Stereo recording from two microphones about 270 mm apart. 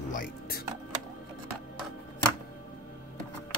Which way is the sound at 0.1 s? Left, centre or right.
Left.